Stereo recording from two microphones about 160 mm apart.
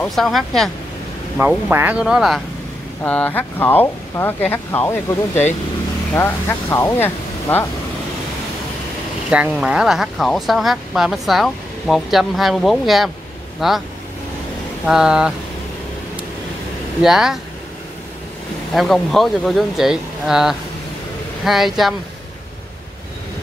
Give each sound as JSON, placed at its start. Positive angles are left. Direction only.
{"t": 0.0, "sound": "speech", "side_deg": 0}
{"t": 1.7, "sound": "speech", "side_deg": -10}
{"t": 3.0, "sound": "speech", "side_deg": 10}
{"t": 9.3, "sound": "speech", "side_deg": -5}
{"t": 14.9, "sound": "speech", "side_deg": -5}
{"t": 17.0, "sound": "speech", "side_deg": -5}
{"t": 18.7, "sound": "speech", "side_deg": 0}